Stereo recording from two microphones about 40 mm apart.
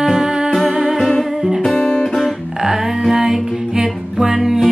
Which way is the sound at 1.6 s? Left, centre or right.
Centre.